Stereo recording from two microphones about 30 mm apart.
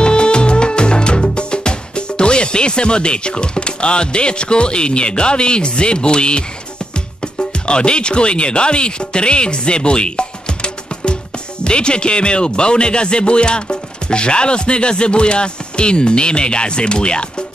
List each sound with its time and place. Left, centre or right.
0.0 s music: left
7.2 s speech: left